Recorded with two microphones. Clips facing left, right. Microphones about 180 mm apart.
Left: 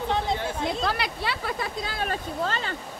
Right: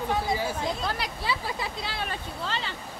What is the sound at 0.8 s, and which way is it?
Speech, 70° left (ahead or behind).